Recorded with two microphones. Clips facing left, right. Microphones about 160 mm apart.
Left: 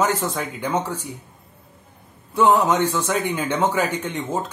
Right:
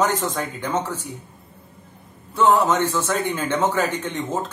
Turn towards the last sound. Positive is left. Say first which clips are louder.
# even
turn(degrees=10)  # may be behind; listen again after turning